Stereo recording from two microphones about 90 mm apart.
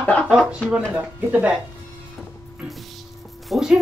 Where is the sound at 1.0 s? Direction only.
15° right (ahead or behind).